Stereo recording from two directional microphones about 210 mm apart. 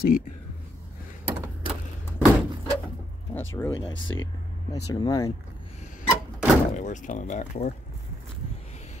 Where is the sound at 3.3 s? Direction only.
10° left (ahead or behind).